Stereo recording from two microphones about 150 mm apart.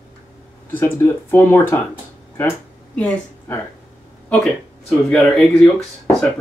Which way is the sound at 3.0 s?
15° left (ahead or behind).